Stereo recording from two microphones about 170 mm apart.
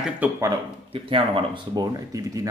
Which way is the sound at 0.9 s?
30° right (ahead or behind).